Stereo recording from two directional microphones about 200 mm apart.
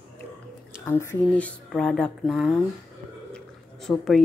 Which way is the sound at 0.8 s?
10° left (ahead or behind).